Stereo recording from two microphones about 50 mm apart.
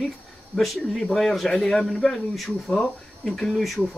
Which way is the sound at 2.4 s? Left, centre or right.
Centre.